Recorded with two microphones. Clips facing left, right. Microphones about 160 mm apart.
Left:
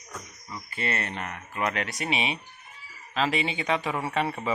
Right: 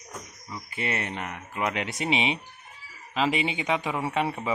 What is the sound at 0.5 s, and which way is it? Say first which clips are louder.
Speech: even; 15° right (ahead or behind).